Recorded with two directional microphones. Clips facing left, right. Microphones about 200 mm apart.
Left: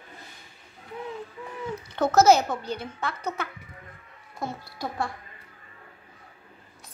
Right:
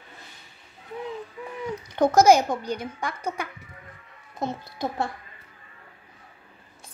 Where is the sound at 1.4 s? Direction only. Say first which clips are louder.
Right 2 dB; 15° right (ahead or behind).